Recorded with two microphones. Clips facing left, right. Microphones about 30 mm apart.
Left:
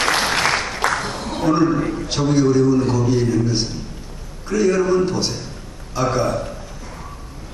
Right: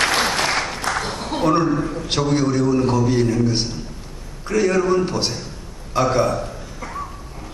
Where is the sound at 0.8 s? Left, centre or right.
Left.